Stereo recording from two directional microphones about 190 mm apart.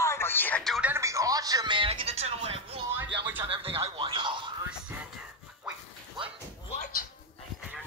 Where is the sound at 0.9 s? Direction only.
15° right (ahead or behind).